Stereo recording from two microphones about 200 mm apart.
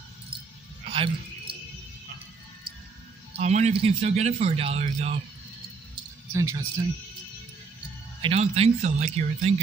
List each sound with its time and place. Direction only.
0.9 s a sound: 25° right (ahead or behind)
3.3 s a man's voice: 35° right (ahead or behind)
6.3 s speech: 15° right (ahead or behind)
8.2 s a man's voice: 30° right (ahead or behind)